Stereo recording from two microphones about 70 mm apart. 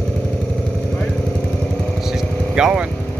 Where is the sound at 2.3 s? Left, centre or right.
Left.